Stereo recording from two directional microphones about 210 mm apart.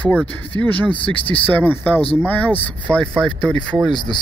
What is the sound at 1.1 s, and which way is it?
Speech, 25° left (ahead or behind).